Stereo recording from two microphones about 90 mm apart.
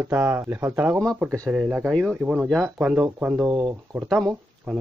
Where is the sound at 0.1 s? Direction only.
25° right (ahead or behind).